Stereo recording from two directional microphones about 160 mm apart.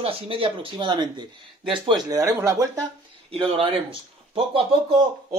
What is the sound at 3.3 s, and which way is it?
Speech, 35° right (ahead or behind).